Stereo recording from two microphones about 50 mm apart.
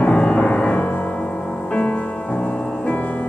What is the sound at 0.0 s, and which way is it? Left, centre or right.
Music, left.